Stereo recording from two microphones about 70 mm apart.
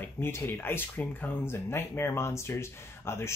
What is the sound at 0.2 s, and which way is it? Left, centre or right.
Speech, left.